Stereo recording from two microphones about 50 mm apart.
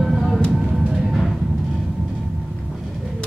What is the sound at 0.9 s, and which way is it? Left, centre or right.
Music, centre.